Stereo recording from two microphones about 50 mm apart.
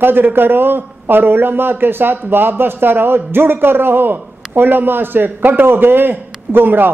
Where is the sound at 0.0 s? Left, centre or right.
Right.